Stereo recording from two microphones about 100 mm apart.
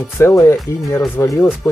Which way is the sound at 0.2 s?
25° left (ahead or behind).